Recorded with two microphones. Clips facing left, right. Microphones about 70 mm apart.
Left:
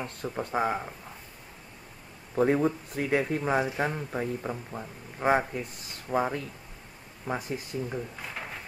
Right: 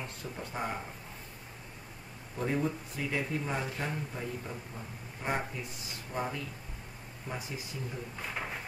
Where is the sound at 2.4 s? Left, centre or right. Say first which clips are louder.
Left 8 dB; left.